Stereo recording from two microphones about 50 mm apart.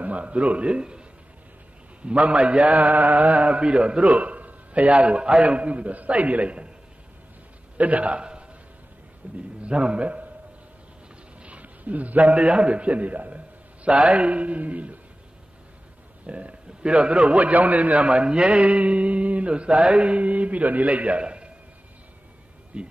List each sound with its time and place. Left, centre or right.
0.0 s a man's voice: right
7.7 s a man's voice: right
11.4 s a man's voice: right
16.3 s a man's voice: right
22.7 s a man's voice: right